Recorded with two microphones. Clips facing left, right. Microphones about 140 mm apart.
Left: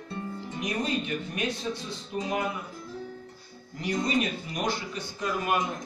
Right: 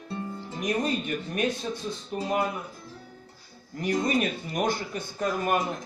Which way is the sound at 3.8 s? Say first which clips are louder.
Right 2 dB; 50° right (ahead or behind).